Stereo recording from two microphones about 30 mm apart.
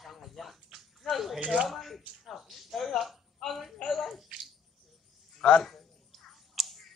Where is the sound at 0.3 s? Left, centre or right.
Centre.